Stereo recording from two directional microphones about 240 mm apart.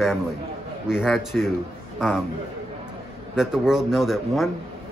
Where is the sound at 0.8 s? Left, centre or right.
Centre.